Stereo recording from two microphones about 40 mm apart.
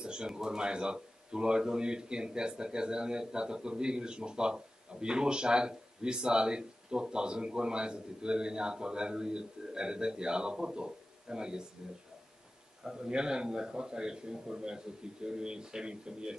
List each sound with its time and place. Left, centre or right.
0.0 s a man's voice: right
12.8 s a man's voice: centre